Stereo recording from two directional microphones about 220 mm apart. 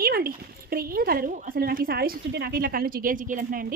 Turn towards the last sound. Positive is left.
turn(degrees=-40)  # may be behind; listen again after turning